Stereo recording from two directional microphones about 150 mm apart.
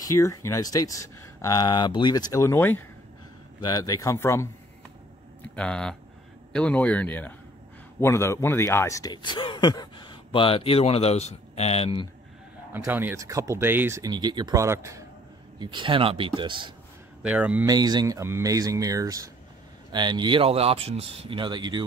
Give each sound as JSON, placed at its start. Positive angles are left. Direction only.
{"t": 0.0, "sound": "speech", "side_deg": 20}
{"t": 5.4, "sound": "speech", "side_deg": 5}
{"t": 12.7, "sound": "speech", "side_deg": -15}
{"t": 15.6, "sound": "speech", "side_deg": -30}
{"t": 17.2, "sound": "speech", "side_deg": -10}
{"t": 17.6, "sound": "speech", "side_deg": -25}